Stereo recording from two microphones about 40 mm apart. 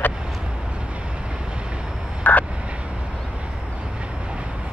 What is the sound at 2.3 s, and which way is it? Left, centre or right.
Vehicle, left.